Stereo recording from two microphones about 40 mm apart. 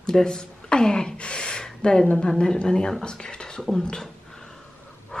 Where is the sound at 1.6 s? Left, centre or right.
Centre.